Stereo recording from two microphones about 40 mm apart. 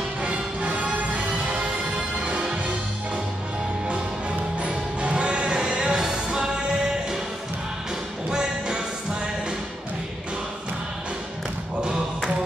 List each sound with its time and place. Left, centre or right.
0.2 s music: right
1.6 s music: right
4.6 s music: right
8.3 s music: centre